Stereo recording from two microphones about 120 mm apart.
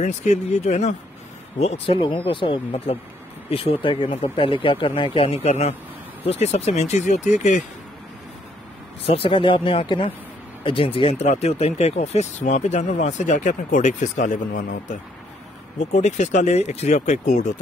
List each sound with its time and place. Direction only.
0.0 s speech: 80° left
1.6 s speech: 55° left (ahead or behind); by 7.6 s 90° left
9.0 s speech: 55° left (ahead or behind); by 15.0 s 90° left
15.8 s speech: 75° left (ahead or behind); by 17.6 s 90° left